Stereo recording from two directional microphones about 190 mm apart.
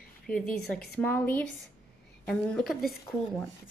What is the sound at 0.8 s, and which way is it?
Speech, 10° left (ahead or behind).